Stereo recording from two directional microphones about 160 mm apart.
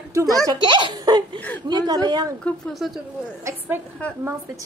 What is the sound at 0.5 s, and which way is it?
Giggle, 30° right (ahead or behind).